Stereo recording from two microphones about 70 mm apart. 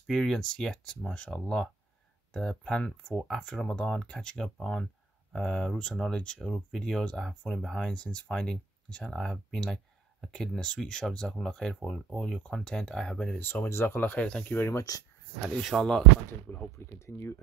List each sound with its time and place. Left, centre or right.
0.0 s speech: centre
13.4 s speech: left
14.2 s speech: centre
15.4 s speech: centre
16.7 s speech: left